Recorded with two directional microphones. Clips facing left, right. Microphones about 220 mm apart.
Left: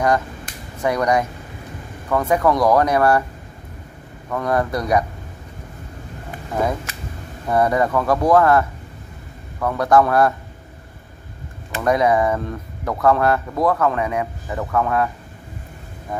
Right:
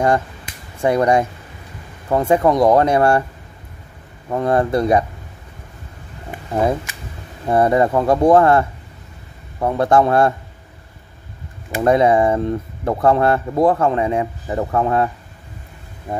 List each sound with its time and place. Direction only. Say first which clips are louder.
0.7 s speech: right 4 dB; 25° right (ahead or behind)
4.3 s speech: right 4 dB; 25° right (ahead or behind)
7.4 s speech: right 3 dB; 25° right (ahead or behind)
11.8 s speech: right 3 dB; 25° right (ahead or behind)
16.1 s vehicle: right 3 dB; 30° right (ahead or behind)